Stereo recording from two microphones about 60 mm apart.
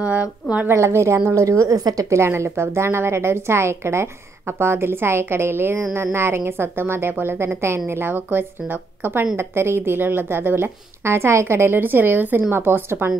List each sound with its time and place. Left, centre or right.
0.0 s a woman's voice: right
0.7 s a woman's voice: right
1.2 s a woman's voice: right
2.1 s a woman's voice: right
7.9 s a woman's voice: right